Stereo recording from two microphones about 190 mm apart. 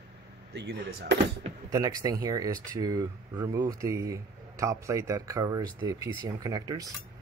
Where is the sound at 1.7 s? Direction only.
20° right (ahead or behind).